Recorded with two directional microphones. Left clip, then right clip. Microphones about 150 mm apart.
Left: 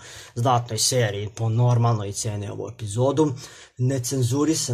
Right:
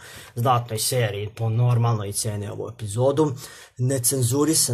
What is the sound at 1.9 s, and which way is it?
Speech, centre (ahead or behind).